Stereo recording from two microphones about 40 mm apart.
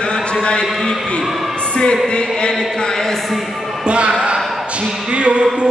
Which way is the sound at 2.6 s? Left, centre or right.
Centre.